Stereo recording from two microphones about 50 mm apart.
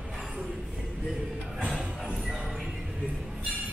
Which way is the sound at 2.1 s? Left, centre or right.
Centre.